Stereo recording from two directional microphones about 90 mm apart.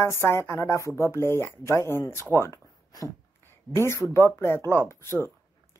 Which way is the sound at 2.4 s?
40° left (ahead or behind).